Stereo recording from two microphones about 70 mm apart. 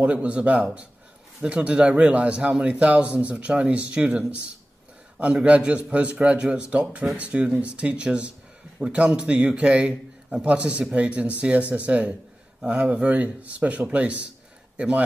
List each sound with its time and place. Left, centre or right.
0.0 s a man's voice: centre
5.2 s a man's voice: centre